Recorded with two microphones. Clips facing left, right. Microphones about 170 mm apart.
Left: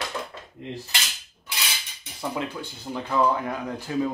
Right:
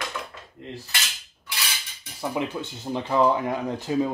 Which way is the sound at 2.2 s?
20° right (ahead or behind).